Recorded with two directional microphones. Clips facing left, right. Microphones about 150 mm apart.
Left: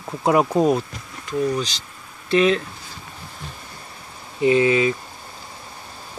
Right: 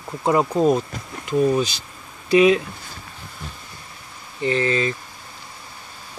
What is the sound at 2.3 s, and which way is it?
Speech, 10° right (ahead or behind).